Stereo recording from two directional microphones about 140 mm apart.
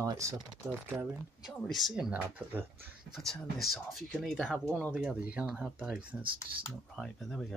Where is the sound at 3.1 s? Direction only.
Centre (ahead or behind).